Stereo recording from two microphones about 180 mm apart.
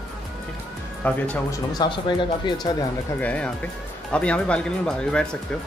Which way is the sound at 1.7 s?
25° left (ahead or behind).